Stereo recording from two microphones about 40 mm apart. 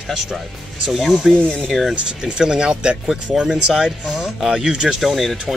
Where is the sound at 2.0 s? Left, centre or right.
Right.